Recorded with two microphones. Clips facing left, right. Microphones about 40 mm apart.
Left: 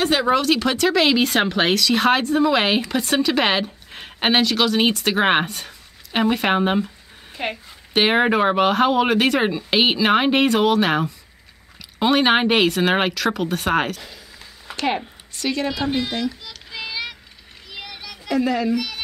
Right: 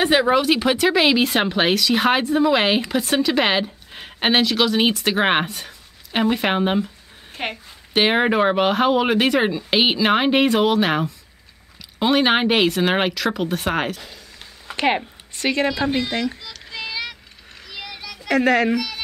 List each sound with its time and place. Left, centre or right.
0.0 s speech: centre
7.9 s speech: centre
14.8 s speech: right
16.4 s child singing: centre
17.6 s a sound: centre
18.3 s a woman's voice: right
18.8 s a sound: centre